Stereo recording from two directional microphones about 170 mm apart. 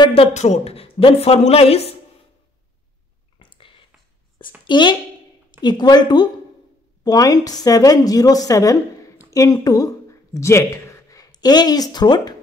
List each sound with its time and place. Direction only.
0.0 s speech: 35° left (ahead or behind)
3.3 s a sound: 30° left (ahead or behind)
4.6 s a woman's voice: 25° left (ahead or behind)